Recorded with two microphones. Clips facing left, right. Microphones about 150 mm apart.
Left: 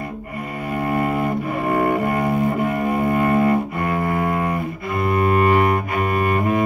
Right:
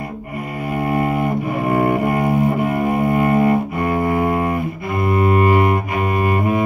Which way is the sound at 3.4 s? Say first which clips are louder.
Right 2 dB; 20° right (ahead or behind).